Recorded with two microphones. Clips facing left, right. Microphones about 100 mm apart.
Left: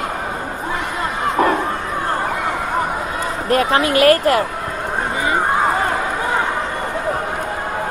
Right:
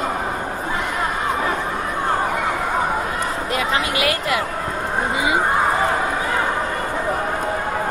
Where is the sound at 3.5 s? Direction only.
45° left (ahead or behind).